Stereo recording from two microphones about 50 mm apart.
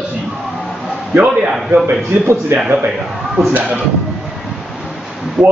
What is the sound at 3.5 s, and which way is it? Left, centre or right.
Speech, right.